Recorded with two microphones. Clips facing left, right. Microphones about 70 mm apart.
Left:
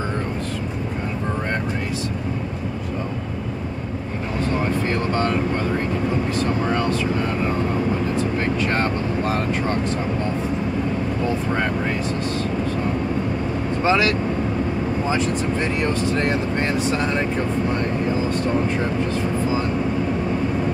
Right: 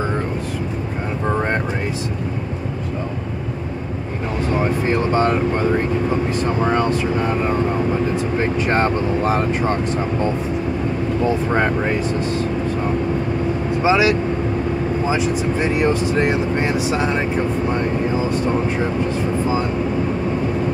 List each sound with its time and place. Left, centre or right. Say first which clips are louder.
4.6 s vehicle: right 5 dB; centre
6.4 s speech: right 4 dB; right
11.5 s speech: right 4 dB; right
13.8 s speech: right 3 dB; centre